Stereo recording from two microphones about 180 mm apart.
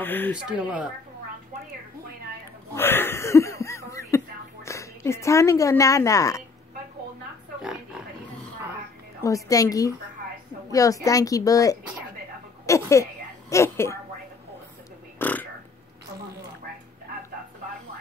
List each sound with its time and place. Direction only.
0.0 s speech: 10° left (ahead or behind)
0.5 s speech: 5° right (ahead or behind)
2.7 s a sound: 10° left (ahead or behind)
4.6 s a woman's voice: 15° left (ahead or behind)
9.2 s speech: 20° left (ahead or behind)
12.6 s a sound: 15° left (ahead or behind)
15.1 s burping: 10° left (ahead or behind)